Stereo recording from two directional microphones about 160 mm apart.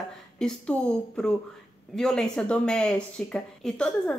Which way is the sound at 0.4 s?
5° left (ahead or behind).